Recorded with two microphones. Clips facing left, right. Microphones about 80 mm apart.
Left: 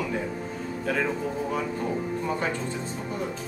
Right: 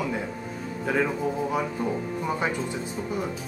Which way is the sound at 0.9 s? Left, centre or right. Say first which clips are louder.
Right 2 dB; centre.